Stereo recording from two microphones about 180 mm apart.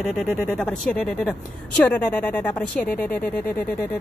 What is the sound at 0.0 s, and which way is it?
A woman's voice, centre (ahead or behind).